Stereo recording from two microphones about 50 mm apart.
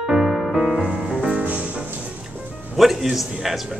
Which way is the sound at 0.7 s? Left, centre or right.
Centre.